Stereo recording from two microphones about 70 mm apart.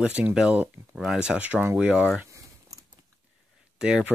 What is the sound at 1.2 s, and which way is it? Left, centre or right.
Speech, centre.